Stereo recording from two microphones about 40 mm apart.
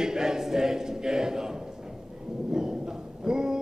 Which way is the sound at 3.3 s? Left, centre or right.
Centre.